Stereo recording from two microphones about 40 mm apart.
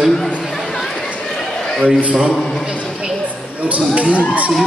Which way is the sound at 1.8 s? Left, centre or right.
Right.